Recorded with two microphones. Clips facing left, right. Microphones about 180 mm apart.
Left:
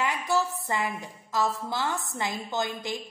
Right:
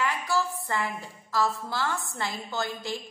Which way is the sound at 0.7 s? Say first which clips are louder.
Left 1 dB; 20° left (ahead or behind).